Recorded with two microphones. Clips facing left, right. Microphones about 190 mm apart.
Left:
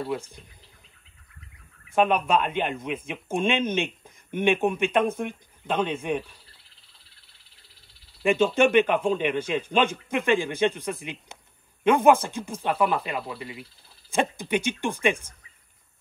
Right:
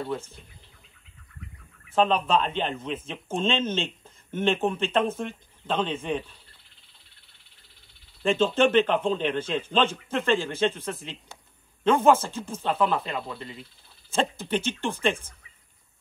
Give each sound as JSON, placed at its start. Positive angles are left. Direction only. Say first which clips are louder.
{"t": 0.0, "sound": "a man's voice", "louder": "left 1 dB", "side_deg": 10}
{"t": 2.0, "sound": "a man's voice", "louder": "left 1 dB", "side_deg": 15}
{"t": 8.2, "sound": "a man's voice", "louder": "left 1 dB", "side_deg": 15}